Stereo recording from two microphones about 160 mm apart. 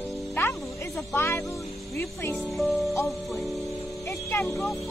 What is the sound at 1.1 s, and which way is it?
Speech, 15° left (ahead or behind).